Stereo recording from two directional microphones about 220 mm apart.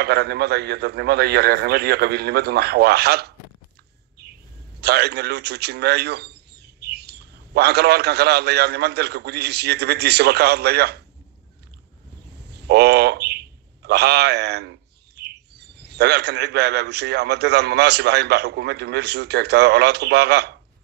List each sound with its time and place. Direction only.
0.0 s a man's voice: 45° right (ahead or behind)
4.7 s a man's voice: 50° right (ahead or behind)
12.5 s a man's voice: 50° right (ahead or behind)